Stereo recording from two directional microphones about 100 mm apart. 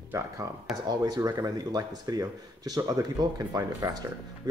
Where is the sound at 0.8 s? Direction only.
40° right (ahead or behind).